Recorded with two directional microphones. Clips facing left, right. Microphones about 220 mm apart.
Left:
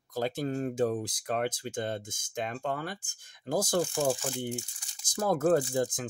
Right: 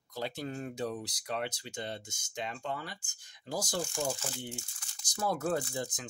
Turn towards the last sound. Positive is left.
turn(degrees=50)  # may be behind; listen again after turning